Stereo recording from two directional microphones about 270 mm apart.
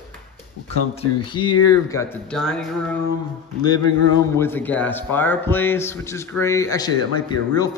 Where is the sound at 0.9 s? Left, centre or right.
Centre.